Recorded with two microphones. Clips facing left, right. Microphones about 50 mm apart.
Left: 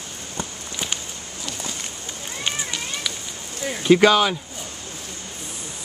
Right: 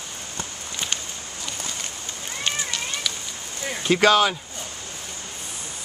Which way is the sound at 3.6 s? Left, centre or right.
Centre.